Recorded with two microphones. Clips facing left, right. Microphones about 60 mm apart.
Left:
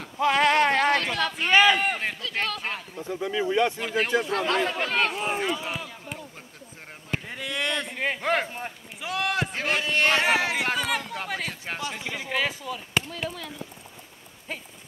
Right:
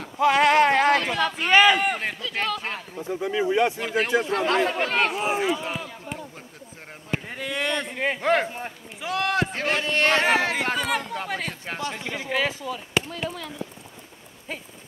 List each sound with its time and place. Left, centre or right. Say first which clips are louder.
0.0 s speech: right 3 dB; centre
3.0 s speech: right 3 dB; centre
3.8 s speech: right 2 dB; centre
10.8 s a sound: right 2 dB; centre
11.2 s speech: right 1 dB; centre